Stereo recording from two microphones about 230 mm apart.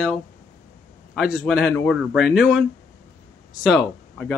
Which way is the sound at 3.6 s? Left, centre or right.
Centre.